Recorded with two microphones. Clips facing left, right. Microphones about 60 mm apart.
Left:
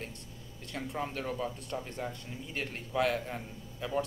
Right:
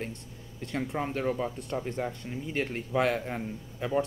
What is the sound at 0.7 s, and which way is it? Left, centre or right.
Speech, right.